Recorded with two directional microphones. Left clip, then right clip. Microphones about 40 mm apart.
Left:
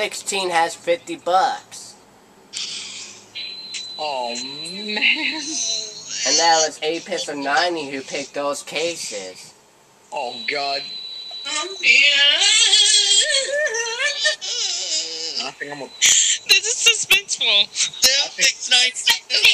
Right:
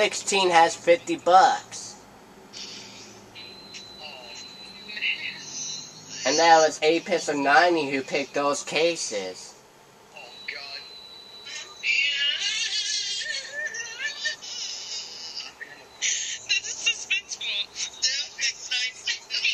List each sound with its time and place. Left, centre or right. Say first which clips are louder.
0.0 s speech: right 1 dB; right
2.5 s a sound: left 11 dB; left
5.4 s a sound: left 11 dB; left
6.8 s speech: right 1 dB; right
8.4 s speech: left 2 dB; right
8.6 s speech: right 1 dB; right
10.1 s speech: left 13 dB; left
11.5 s a sound: left 10 dB; left
16.0 s speech: left 12 dB; left
17.4 s speech: left 12 dB; left
18.0 s speech: left 10 dB; left